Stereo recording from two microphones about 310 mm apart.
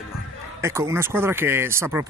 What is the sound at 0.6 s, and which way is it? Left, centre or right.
Speech, centre.